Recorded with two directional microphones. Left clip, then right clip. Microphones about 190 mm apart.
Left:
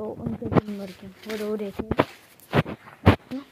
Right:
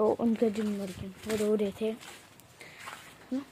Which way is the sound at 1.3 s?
15° right (ahead or behind).